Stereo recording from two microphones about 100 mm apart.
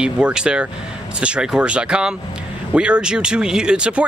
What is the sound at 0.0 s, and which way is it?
Speech, 10° right (ahead or behind).